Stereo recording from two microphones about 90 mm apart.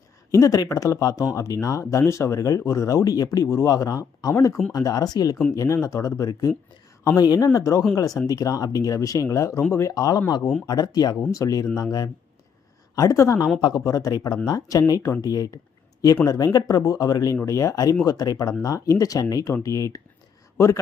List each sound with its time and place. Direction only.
0.3 s a woman's voice: 35° left (ahead or behind)
5.5 s speech: 30° left (ahead or behind)
13.6 s speech: 50° left (ahead or behind); by 20.8 s 30° left (ahead or behind)